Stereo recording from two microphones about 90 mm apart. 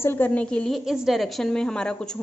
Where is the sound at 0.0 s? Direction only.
25° left (ahead or behind).